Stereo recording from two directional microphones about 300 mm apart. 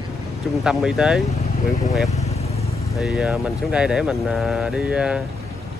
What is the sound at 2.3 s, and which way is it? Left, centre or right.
Vehicle, left.